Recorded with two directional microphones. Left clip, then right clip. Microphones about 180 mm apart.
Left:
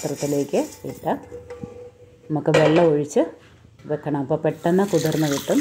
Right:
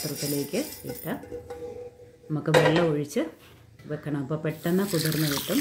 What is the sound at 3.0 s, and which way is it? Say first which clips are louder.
Speech: left 8 dB; 10° left (ahead or behind).